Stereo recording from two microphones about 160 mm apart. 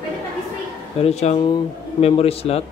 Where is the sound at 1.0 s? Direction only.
40° left (ahead or behind).